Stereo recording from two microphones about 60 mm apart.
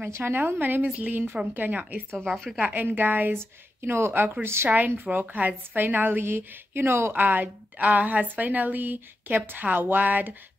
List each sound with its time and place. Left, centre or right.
0.1 s a woman's voice: right
2.2 s a woman's voice: centre
2.6 s a woman's voice: right
3.3 s a woman's voice: right
4.6 s a woman's voice: right
7.2 s a woman's voice: right